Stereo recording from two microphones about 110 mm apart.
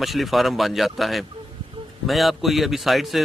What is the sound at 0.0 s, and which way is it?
A man's voice, centre (ahead or behind).